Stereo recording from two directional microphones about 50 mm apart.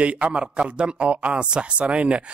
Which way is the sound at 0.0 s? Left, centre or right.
Right.